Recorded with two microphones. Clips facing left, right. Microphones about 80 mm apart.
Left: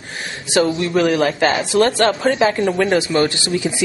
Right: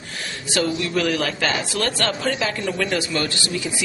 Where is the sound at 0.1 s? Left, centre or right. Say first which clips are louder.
Left 2 dB; left.